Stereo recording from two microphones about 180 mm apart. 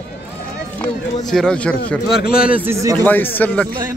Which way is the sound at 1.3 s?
5° left (ahead or behind).